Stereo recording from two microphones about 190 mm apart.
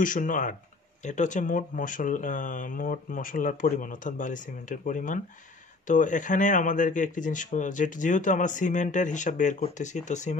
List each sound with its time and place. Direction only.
0.0 s speech: 45° left (ahead or behind)